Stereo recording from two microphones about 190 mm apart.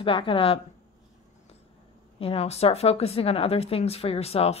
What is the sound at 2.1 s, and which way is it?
A woman's voice, 30° left (ahead or behind).